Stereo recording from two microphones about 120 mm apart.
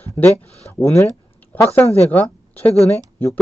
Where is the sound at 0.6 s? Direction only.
25° left (ahead or behind).